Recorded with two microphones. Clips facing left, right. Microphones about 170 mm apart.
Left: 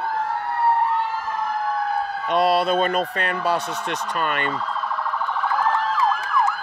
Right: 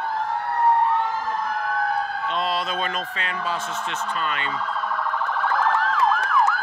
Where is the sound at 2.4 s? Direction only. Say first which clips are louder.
Left 10 dB; 65° left (ahead or behind).